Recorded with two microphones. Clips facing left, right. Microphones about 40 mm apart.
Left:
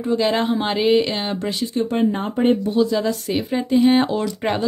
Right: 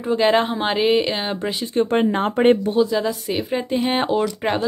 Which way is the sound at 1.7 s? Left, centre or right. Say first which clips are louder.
Right 3 dB; right.